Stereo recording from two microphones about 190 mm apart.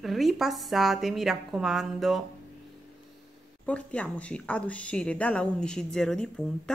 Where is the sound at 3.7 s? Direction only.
5° left (ahead or behind).